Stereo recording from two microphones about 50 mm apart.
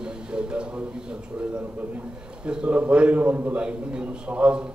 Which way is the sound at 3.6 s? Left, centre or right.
Right.